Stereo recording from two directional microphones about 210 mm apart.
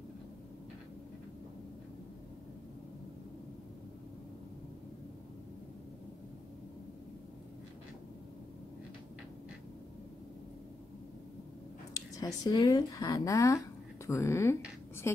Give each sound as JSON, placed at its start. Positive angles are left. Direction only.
{"t": 12.2, "sound": "speech", "side_deg": 20}